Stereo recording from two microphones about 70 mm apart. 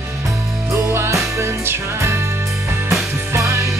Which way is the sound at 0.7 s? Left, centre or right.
Right.